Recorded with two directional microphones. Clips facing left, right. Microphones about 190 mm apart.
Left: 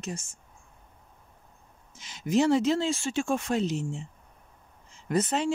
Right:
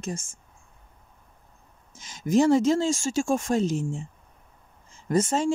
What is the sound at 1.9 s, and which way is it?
Speech, 45° right (ahead or behind).